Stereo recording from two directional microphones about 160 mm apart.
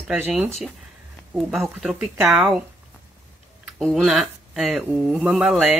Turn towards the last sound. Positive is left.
turn(degrees=0)  # may be behind; listen again after turning